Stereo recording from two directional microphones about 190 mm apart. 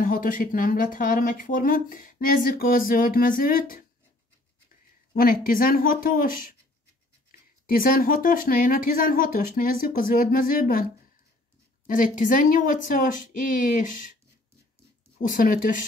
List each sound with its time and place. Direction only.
0.0 s speech: 45° left (ahead or behind)
5.1 s speech: 50° left (ahead or behind)
15.3 s speech: 45° left (ahead or behind)